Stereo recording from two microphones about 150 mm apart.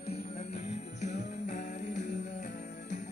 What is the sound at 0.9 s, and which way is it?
Music, 50° left (ahead or behind).